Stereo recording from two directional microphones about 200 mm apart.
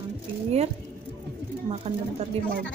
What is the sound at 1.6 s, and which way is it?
Speech, 30° right (ahead or behind).